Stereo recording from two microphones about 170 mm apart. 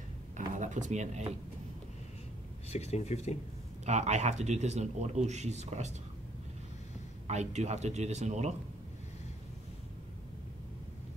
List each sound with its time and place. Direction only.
0.4 s speech: 45° right (ahead or behind)
2.7 s speech: 40° left (ahead or behind)
3.8 s a man's voice: 40° right (ahead or behind)
7.2 s a man's voice: 40° right (ahead or behind)